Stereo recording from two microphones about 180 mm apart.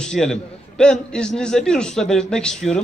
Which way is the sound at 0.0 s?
5° left (ahead or behind).